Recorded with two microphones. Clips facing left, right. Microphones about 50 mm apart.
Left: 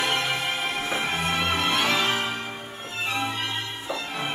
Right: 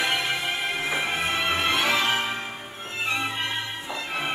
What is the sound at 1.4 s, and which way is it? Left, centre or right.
Music, centre.